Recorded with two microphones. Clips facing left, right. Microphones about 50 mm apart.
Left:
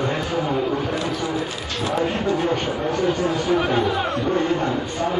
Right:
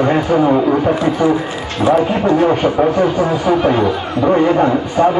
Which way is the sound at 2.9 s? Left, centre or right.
Right.